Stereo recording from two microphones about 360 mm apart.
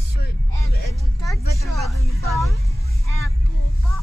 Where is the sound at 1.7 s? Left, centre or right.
Centre.